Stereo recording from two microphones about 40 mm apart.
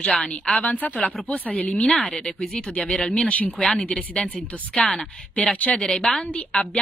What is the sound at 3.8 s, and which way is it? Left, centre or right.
A woman's voice, left.